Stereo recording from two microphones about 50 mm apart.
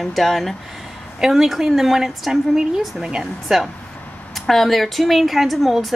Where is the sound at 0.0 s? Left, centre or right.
Centre.